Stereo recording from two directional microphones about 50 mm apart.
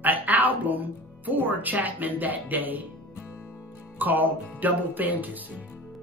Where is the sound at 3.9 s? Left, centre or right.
Right.